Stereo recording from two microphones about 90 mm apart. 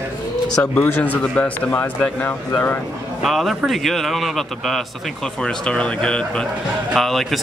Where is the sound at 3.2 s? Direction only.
Centre (ahead or behind).